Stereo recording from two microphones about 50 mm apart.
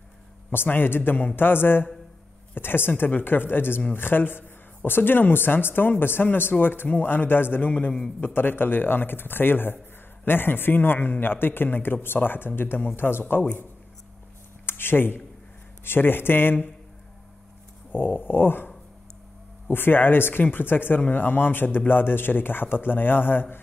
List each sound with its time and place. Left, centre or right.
0.5 s a man's voice: left
14.7 s a man's voice: left
17.9 s a man's voice: left
19.7 s a man's voice: left